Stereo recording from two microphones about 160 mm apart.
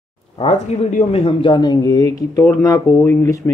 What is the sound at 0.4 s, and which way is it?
Speech, 45° left (ahead or behind).